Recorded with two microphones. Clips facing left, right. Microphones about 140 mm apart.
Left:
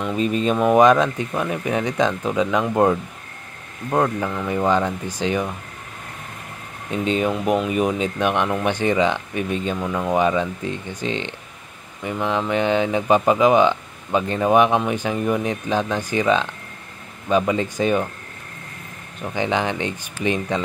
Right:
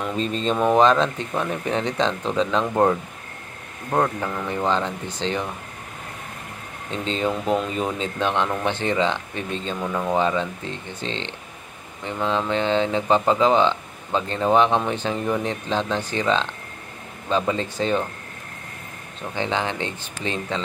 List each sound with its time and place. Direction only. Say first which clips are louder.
0.1 s speech: left 5 dB; 10° left (ahead or behind)
6.9 s speech: left 4 dB; 15° left (ahead or behind)
9.8 s speech: left 1 dB; centre (ahead or behind)
10.1 s speech: left 4 dB; 15° left (ahead or behind)
19.3 s speech: left 3 dB; 15° left (ahead or behind)